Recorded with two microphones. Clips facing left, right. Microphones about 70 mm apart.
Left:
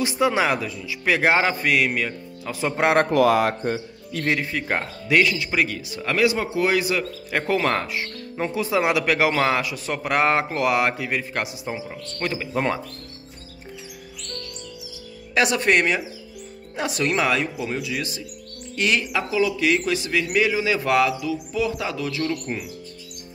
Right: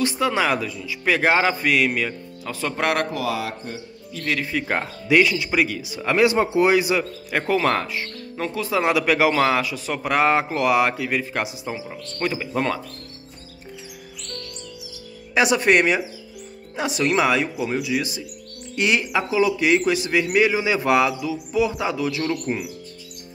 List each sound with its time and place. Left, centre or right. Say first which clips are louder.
0.0 s speech: even; centre
2.6 s speech: left 3 dB; centre
3.1 s speech: left 8 dB; left
4.5 s speech: right 1 dB; centre
6.1 s a man's voice: right 4 dB; right
6.8 s speech: right 2 dB; centre
7.4 s speech: right 2 dB; centre
15.3 s a man's voice: right 2 dB; centre